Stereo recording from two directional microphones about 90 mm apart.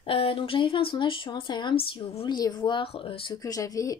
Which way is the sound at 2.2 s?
45° left (ahead or behind).